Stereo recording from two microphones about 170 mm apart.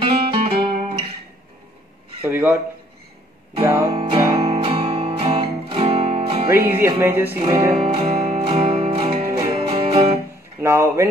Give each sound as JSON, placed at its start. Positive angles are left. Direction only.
{"t": 0.0, "sound": "music", "side_deg": -35}
{"t": 0.6, "sound": "guitar", "side_deg": -60}
{"t": 2.2, "sound": "speech", "side_deg": -10}
{"t": 3.9, "sound": "music", "side_deg": -35}
{"t": 6.5, "sound": "speech", "side_deg": -15}
{"t": 7.7, "sound": "music", "side_deg": -35}
{"t": 10.6, "sound": "speech", "side_deg": -15}